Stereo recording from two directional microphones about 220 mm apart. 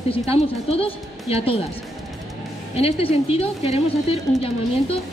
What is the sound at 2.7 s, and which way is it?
A woman's voice, 25° left (ahead or behind).